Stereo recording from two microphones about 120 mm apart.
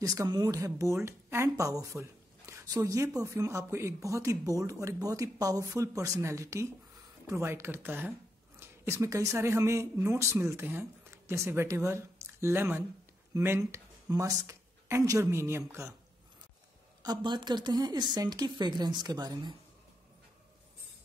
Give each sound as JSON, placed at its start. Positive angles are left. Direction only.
{"t": 0.0, "sound": "speech", "side_deg": -30}
{"t": 17.0, "sound": "speech", "side_deg": -35}